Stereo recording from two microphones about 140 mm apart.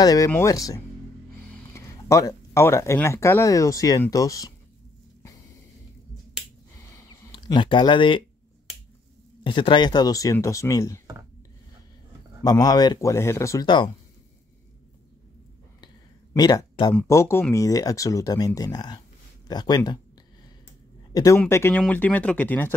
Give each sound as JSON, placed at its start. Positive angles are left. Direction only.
{"t": 0.0, "sound": "speech", "side_deg": 25}
{"t": 7.1, "sound": "speech", "side_deg": 30}
{"t": 9.4, "sound": "speech", "side_deg": 35}
{"t": 12.4, "sound": "speech", "side_deg": 25}
{"t": 16.3, "sound": "speech", "side_deg": 30}
{"t": 17.1, "sound": "speech", "side_deg": 20}
{"t": 21.1, "sound": "speech", "side_deg": 25}